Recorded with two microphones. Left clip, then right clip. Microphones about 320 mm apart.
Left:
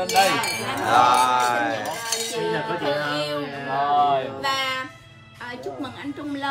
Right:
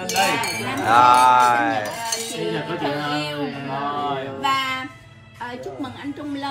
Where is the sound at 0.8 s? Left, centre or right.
Centre.